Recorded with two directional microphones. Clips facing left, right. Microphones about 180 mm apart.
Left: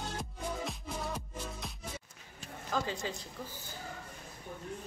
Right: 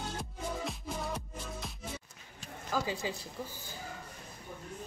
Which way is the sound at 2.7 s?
5° right (ahead or behind).